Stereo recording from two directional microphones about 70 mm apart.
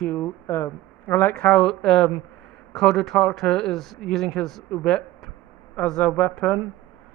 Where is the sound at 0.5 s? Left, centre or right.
Left.